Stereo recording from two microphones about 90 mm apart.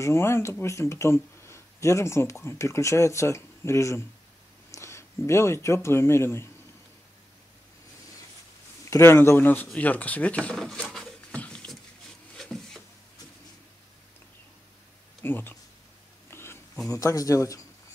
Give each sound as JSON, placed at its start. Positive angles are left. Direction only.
{"t": 0.0, "sound": "speech", "side_deg": 30}
{"t": 8.9, "sound": "speech", "side_deg": 30}
{"t": 10.5, "sound": "a sound", "side_deg": 5}
{"t": 15.2, "sound": "speech", "side_deg": 25}
{"t": 16.3, "sound": "a sound", "side_deg": 30}
{"t": 16.9, "sound": "speech", "side_deg": 40}